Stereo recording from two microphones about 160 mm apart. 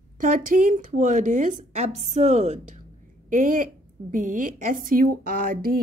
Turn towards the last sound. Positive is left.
turn(degrees=-65)  # may be behind; listen again after turning